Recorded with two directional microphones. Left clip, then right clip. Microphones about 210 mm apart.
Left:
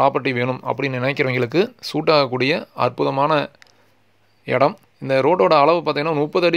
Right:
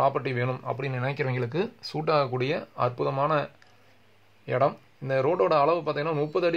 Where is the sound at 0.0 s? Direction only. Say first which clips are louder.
Left 7 dB; 35° left (ahead or behind).